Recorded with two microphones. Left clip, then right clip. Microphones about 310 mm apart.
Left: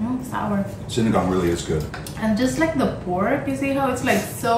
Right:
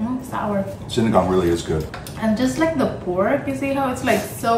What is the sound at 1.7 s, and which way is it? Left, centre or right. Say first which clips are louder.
Speech: right 1 dB; centre.